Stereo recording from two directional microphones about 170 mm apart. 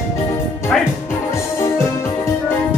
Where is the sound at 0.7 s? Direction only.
5° left (ahead or behind).